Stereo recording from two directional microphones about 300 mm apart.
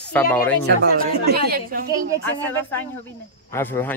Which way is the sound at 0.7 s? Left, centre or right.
Right.